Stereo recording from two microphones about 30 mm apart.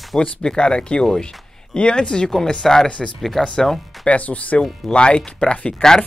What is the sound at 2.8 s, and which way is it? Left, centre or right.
Speech, left.